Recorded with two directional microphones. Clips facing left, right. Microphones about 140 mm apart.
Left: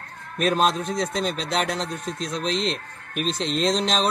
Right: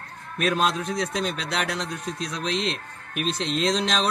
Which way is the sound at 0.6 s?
40° left (ahead or behind).